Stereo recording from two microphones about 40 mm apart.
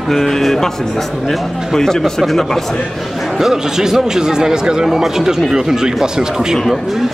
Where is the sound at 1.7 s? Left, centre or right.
Centre.